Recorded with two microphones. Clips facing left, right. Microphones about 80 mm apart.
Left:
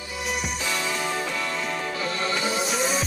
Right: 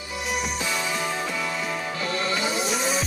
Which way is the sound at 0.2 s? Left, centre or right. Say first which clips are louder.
Right 1 dB; centre.